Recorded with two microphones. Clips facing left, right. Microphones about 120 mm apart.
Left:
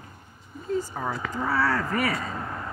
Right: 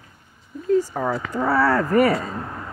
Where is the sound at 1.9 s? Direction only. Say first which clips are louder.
Right 9 dB; 45° right (ahead or behind).